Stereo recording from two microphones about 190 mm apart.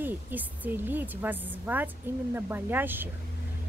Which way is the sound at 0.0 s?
10° right (ahead or behind).